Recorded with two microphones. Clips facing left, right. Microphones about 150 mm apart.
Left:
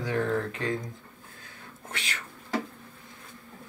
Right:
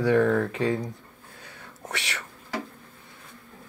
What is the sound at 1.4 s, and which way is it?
Whispering, 75° right (ahead or behind).